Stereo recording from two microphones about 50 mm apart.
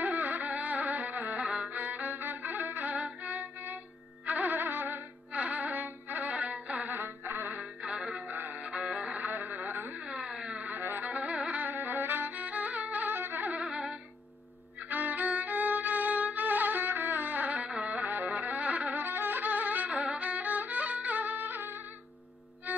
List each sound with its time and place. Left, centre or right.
0.0 s music: right
5.3 s music: right
6.9 s music: right
7.8 s music: centre
8.3 s music: right
8.6 s music: right
9.9 s a sound: centre
10.7 s music: right
11.6 s music: right
13.6 s music: centre
14.9 s music: right